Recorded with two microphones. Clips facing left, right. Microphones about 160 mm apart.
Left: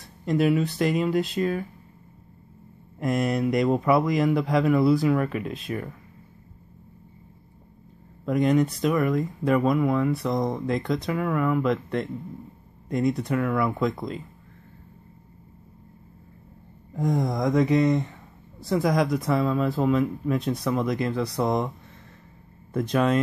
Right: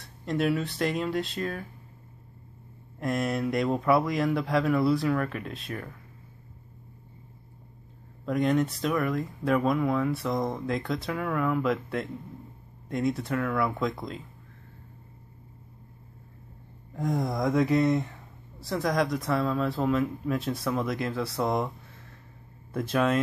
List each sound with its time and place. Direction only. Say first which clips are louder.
0.0 s speech: left 5 dB; centre (ahead or behind)
3.0 s speech: left 4 dB; centre (ahead or behind)
8.3 s speech: left 4 dB; centre (ahead or behind)
16.9 s speech: left 3 dB; centre (ahead or behind)